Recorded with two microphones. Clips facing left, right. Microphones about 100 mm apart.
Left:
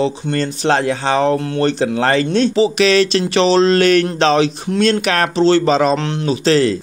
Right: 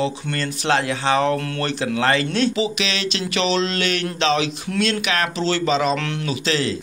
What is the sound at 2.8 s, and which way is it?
Speech, 45° left (ahead or behind).